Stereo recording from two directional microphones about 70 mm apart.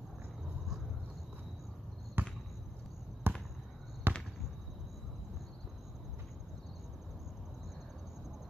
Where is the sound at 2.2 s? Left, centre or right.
Right.